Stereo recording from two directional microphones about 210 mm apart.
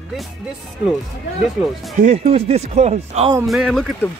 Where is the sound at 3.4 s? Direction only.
Centre (ahead or behind).